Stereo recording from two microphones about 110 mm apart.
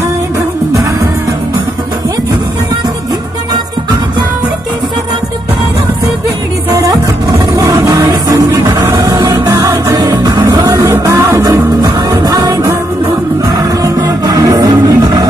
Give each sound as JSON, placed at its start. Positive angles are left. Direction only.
{"t": 6.8, "sound": "music", "side_deg": -30}
{"t": 8.7, "sound": "music", "side_deg": -25}